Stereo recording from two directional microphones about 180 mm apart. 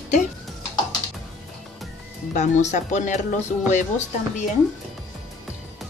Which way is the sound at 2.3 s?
40° left (ahead or behind).